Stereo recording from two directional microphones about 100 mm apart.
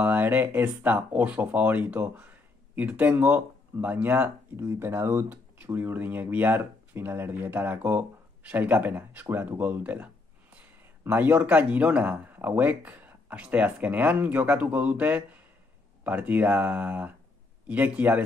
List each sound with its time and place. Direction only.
0.0 s speech: 20° right (ahead or behind)